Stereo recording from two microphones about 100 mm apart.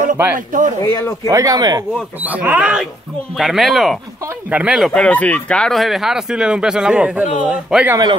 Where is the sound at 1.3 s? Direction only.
40° right (ahead or behind).